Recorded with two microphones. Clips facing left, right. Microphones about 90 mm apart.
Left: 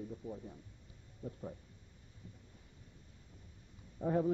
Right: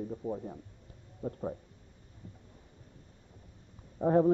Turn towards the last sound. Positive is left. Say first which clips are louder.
# right 8 dB
turn(degrees=-50)  # may be behind; listen again after turning